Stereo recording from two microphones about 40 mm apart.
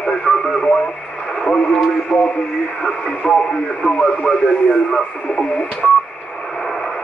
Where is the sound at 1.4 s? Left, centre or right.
Left.